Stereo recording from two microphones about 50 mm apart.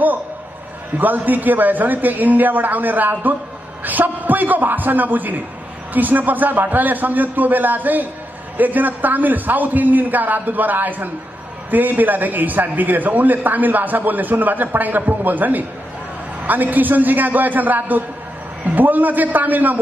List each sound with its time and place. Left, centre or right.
0.9 s a man's voice: right